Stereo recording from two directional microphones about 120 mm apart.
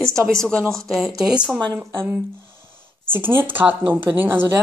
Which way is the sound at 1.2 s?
10° right (ahead or behind).